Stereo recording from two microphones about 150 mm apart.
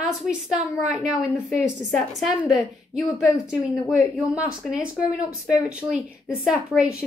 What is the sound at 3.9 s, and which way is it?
A woman's voice, 5° right (ahead or behind).